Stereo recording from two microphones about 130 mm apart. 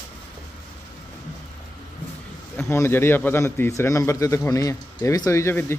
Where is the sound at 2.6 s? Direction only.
20° left (ahead or behind).